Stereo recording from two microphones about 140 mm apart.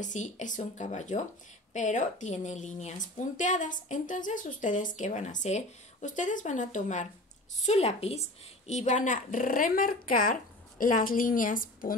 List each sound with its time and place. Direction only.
0.0 s a woman's voice: 60° left (ahead or behind); by 11.9 s 80° left